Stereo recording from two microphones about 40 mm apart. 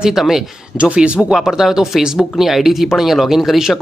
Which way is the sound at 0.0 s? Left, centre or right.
Centre.